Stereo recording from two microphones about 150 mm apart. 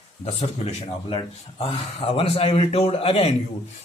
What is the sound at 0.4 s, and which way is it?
Speech, 40° left (ahead or behind).